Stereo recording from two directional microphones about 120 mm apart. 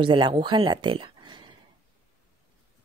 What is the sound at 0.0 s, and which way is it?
Speech, 45° right (ahead or behind).